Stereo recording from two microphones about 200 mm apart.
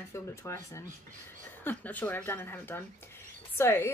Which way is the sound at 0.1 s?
15° left (ahead or behind).